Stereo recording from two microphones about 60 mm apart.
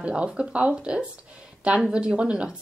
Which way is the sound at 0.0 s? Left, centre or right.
Centre.